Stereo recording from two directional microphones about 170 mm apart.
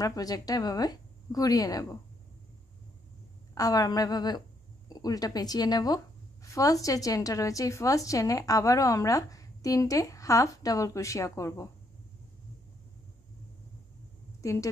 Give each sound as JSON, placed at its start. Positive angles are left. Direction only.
{"t": 0.0, "sound": "a woman's voice", "side_deg": 20}
{"t": 3.5, "sound": "a woman's voice", "side_deg": 20}
{"t": 14.4, "sound": "speech", "side_deg": 20}